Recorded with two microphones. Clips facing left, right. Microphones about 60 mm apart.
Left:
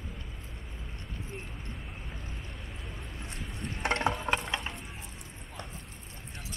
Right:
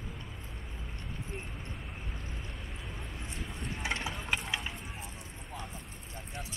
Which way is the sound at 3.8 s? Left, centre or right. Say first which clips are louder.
Left 8 dB; left.